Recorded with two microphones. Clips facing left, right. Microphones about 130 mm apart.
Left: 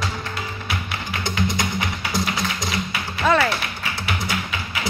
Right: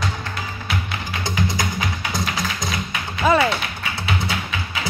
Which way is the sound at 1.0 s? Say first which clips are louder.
Left 2 dB; 25° left (ahead or behind).